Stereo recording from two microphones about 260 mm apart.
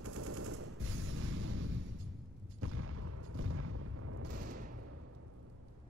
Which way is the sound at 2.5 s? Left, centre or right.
Right.